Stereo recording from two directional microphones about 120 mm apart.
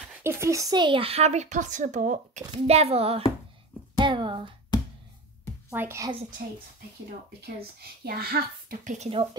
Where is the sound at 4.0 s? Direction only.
40° right (ahead or behind).